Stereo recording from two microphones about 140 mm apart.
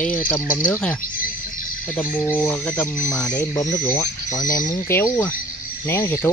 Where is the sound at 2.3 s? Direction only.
10° left (ahead or behind).